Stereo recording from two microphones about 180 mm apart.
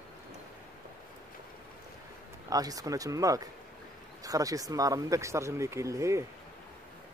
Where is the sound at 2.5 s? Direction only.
20° right (ahead or behind).